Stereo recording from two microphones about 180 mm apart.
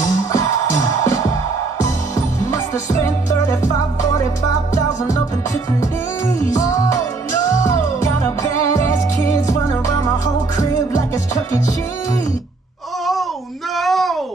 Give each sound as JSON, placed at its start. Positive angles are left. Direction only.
{"t": 0.0, "sound": "music", "side_deg": 15}
{"t": 2.1, "sound": "music", "side_deg": 15}
{"t": 5.8, "sound": "music", "side_deg": 20}
{"t": 13.0, "sound": "babbling", "side_deg": 0}
{"t": 13.7, "sound": "a sound", "side_deg": 0}